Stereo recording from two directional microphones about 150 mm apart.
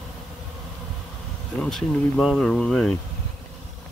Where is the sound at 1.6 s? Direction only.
Centre (ahead or behind).